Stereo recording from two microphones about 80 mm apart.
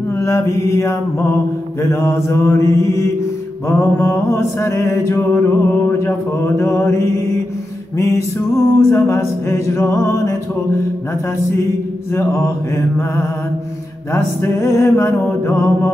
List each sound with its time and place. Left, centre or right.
0.1 s mantra: left
1.8 s music: left
12.1 s music: left